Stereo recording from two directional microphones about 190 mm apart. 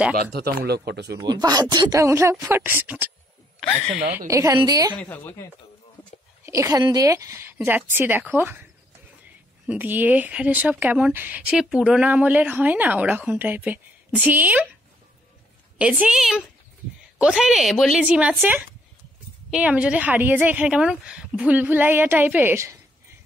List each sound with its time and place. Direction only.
0.3 s a man's voice: 55° right (ahead or behind)
1.1 s speech: 20° right (ahead or behind); by 4.0 s centre (ahead or behind)
4.0 s a woman's voice: 50° right (ahead or behind)
4.3 s speech: 15° right (ahead or behind)
4.9 s speech: 10° left (ahead or behind)
6.4 s speech: 15° right (ahead or behind)
9.7 s speech: 10° right (ahead or behind)
15.8 s a woman's voice: 5° right (ahead or behind)